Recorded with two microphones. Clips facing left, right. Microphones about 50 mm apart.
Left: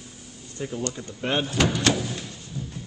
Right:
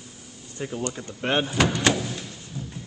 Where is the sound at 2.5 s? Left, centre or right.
Right.